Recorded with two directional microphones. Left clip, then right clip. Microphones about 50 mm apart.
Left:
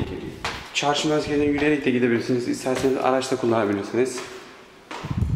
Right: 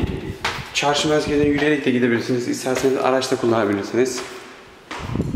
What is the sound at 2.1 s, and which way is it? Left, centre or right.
Speech, left.